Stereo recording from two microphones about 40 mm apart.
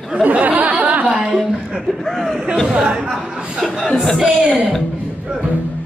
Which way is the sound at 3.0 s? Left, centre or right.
Centre.